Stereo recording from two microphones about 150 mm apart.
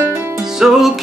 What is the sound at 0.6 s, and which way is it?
Music, 5° right (ahead or behind).